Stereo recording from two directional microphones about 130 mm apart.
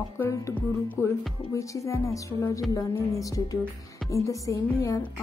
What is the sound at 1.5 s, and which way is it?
A woman's voice, 25° left (ahead or behind).